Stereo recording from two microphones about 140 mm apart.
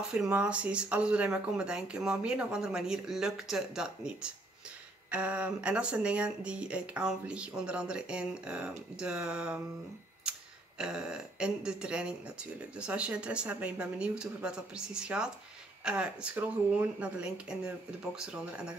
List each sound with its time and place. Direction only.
0.1 s speech: 5° right (ahead or behind)
10.8 s speech: 5° right (ahead or behind)